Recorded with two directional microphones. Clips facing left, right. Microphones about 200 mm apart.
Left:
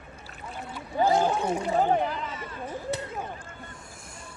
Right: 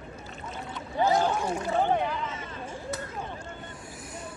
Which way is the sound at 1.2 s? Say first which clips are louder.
Left 2 dB; 20° left (ahead or behind).